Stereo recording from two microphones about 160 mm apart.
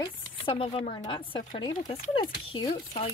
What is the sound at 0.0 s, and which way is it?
Speech, 35° left (ahead or behind).